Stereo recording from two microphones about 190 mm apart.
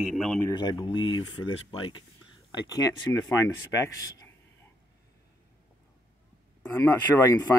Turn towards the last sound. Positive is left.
turn(degrees=20)  # may be behind; listen again after turning